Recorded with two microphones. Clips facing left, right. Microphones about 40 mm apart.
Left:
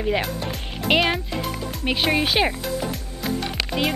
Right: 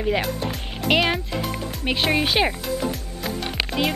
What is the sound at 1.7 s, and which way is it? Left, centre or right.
Music, centre.